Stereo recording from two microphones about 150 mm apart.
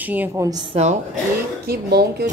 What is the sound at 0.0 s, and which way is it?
Speech, 10° right (ahead or behind).